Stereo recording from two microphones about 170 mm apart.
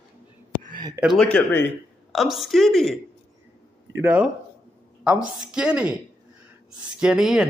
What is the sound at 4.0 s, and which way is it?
A woman's voice, 10° right (ahead or behind).